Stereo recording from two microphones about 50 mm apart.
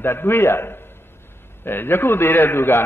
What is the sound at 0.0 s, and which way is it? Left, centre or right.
A man's voice, left.